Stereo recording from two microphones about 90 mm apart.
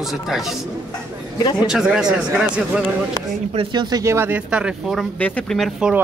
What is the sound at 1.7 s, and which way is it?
Speech, 5° right (ahead or behind).